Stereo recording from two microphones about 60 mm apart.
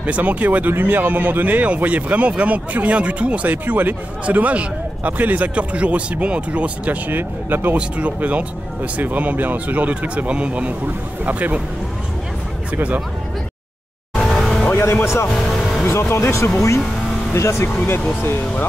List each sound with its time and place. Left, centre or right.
0.0 s speech: right
7.1 s speech: right
7.7 s speech: right
14.1 s music: centre
15.2 s speech: centre
15.8 s speech: left
18.2 s speech: left